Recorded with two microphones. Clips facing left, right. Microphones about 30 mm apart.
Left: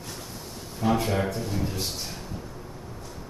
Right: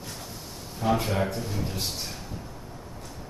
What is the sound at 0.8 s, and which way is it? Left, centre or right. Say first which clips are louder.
Speech: even; centre.